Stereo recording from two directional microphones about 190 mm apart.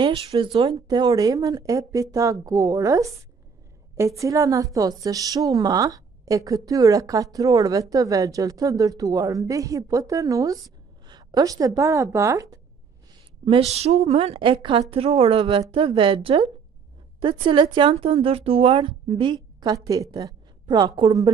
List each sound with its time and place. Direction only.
0.0 s a woman's voice: 25° right (ahead or behind)
13.5 s a woman's voice: 35° right (ahead or behind)